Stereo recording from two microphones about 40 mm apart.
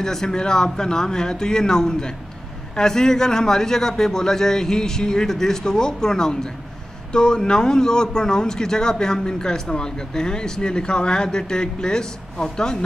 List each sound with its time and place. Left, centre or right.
0.0 s a man's voice: centre